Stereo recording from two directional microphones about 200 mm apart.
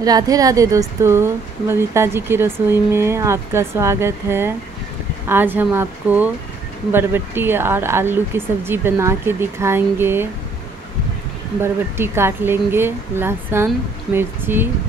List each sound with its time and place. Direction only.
0.0 s a woman's voice: 20° right (ahead or behind)
11.6 s a woman's voice: 10° right (ahead or behind)